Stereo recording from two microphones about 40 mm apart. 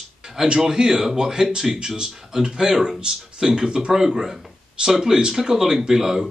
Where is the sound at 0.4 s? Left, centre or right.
Centre.